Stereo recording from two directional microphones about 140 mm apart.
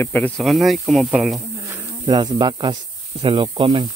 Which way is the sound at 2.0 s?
35° right (ahead or behind).